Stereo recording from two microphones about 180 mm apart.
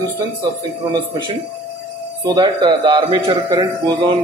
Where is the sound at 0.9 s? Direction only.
25° right (ahead or behind).